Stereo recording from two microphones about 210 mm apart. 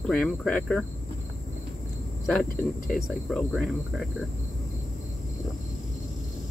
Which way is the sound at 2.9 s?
Centre (ahead or behind).